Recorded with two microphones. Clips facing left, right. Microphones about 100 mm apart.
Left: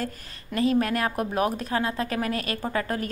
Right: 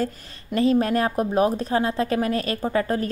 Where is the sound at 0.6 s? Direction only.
30° right (ahead or behind).